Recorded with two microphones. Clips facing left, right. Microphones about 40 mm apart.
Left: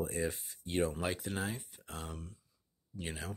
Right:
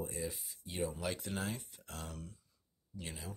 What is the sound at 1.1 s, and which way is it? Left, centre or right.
Speech, centre.